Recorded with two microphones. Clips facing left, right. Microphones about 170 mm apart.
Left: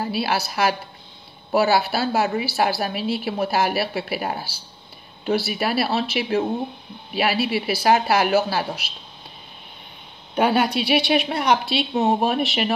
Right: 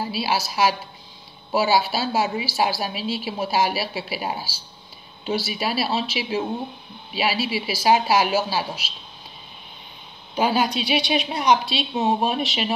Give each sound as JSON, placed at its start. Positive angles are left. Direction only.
{"t": 0.0, "sound": "a woman's voice", "side_deg": 60}
{"t": 10.3, "sound": "a woman's voice", "side_deg": 60}